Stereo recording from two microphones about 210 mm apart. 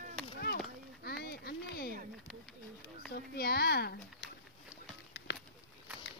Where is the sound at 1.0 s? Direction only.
50° left (ahead or behind).